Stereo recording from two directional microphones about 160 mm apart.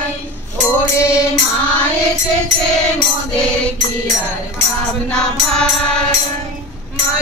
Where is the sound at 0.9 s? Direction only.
15° left (ahead or behind).